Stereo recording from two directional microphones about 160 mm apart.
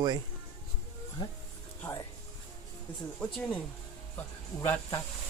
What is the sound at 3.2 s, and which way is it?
Speech, 5° left (ahead or behind).